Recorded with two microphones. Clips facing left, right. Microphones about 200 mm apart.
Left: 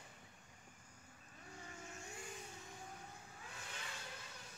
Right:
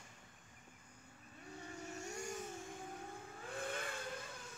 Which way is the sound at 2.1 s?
45° right (ahead or behind).